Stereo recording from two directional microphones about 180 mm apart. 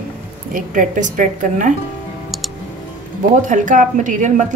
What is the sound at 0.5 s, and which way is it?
A woman's voice, 45° right (ahead or behind).